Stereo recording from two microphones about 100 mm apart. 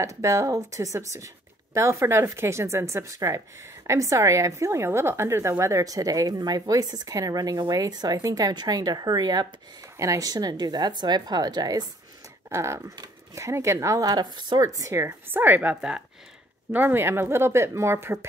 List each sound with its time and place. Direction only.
0.0 s speech: 30° right (ahead or behind)
9.9 s speech: 35° right (ahead or behind)
12.4 s a woman's voice: 30° right (ahead or behind); by 14.6 s 45° right (ahead or behind)
14.6 s a woman's voice: 35° right (ahead or behind); by 16.0 s 10° right (ahead or behind)
16.7 s a woman's voice: 20° right (ahead or behind)